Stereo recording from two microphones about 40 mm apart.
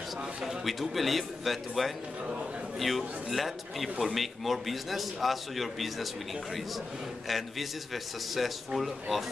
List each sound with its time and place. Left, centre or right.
0.7 s a man's voice: centre
7.2 s a man's voice: centre